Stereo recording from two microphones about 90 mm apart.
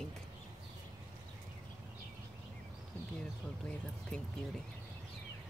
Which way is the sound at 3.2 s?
10° left (ahead or behind).